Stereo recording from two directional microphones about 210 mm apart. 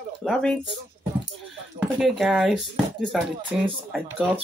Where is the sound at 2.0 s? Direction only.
Centre (ahead or behind).